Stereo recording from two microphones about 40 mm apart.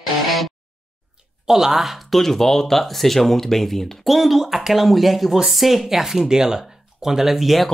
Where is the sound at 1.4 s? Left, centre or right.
Centre.